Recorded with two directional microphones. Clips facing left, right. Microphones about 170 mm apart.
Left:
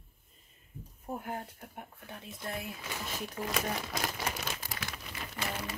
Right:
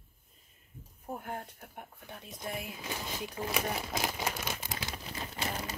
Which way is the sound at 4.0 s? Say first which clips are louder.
Right 1 dB; 10° right (ahead or behind).